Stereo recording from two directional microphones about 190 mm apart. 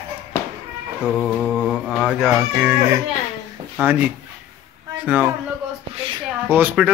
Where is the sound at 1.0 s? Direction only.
5° left (ahead or behind).